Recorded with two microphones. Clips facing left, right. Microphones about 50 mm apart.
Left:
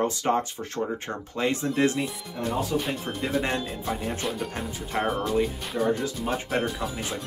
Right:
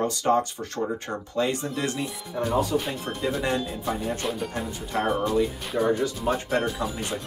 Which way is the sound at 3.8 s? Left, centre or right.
Centre.